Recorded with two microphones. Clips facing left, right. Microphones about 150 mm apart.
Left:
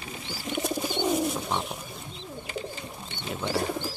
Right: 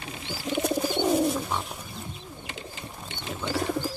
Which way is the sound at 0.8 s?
10° right (ahead or behind).